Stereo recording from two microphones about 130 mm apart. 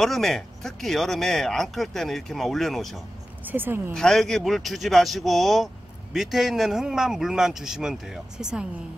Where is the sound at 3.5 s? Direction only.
15° right (ahead or behind).